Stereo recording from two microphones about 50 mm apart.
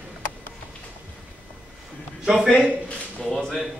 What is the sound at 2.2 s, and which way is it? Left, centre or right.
Speech, centre.